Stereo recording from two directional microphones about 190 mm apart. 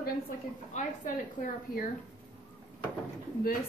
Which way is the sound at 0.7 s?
45° left (ahead or behind).